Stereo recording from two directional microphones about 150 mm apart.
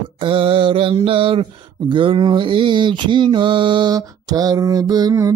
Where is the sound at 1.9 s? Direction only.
35° right (ahead or behind).